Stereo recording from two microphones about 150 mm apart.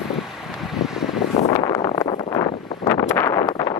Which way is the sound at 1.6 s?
30° left (ahead or behind).